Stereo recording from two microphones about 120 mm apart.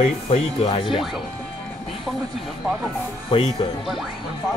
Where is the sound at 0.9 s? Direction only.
Centre (ahead or behind).